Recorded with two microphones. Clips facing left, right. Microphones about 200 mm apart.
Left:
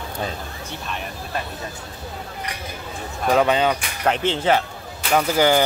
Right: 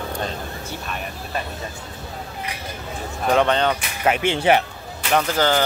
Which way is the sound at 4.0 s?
10° right (ahead or behind).